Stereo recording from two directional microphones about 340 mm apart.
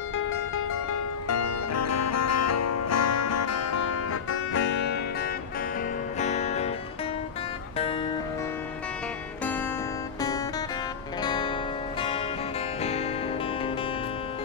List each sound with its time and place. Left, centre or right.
1.3 s music: left
6.1 s music: centre
11.2 s music: centre